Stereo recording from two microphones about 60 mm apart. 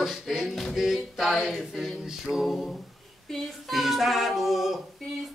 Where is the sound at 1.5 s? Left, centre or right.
Centre.